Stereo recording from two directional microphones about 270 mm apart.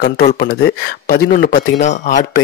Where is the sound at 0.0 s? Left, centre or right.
Left.